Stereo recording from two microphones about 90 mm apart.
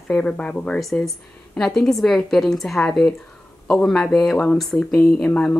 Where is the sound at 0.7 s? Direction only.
Centre (ahead or behind).